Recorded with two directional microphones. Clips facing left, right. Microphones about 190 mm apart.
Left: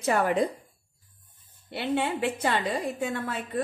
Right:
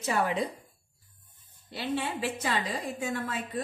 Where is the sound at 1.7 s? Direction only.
60° left (ahead or behind).